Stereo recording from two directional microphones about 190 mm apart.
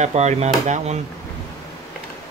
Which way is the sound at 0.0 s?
35° right (ahead or behind).